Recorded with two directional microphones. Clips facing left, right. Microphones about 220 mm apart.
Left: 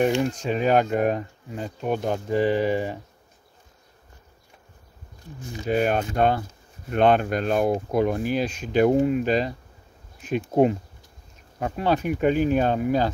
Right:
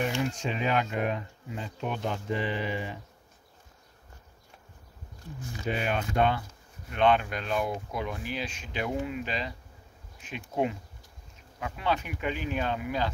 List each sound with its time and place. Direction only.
0.2 s speech: 40° left (ahead or behind)
5.7 s speech: 40° left (ahead or behind)